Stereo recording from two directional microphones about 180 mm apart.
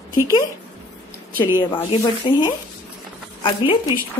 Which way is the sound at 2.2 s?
25° left (ahead or behind).